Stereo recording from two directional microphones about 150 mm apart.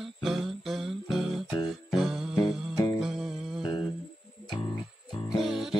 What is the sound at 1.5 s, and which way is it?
Music, 30° left (ahead or behind).